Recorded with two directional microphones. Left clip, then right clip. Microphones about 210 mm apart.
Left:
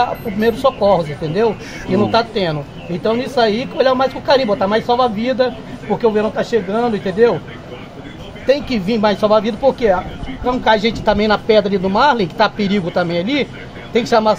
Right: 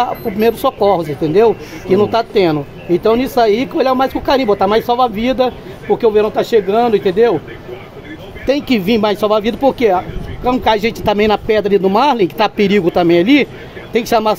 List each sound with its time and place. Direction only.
0.0 s speech: 50° right (ahead or behind)
8.5 s speech: 50° right (ahead or behind)